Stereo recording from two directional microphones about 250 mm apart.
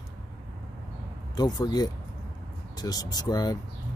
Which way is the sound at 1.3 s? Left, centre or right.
Centre.